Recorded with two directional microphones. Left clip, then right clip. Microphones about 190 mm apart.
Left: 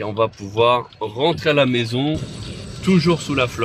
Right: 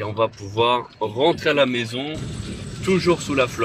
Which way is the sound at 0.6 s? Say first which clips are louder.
Left 3 dB; 15° left (ahead or behind).